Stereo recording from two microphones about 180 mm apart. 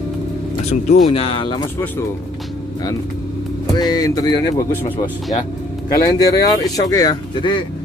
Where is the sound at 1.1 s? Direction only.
30° left (ahead or behind).